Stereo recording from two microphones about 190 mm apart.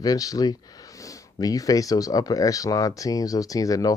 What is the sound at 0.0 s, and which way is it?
Speech, 20° left (ahead or behind).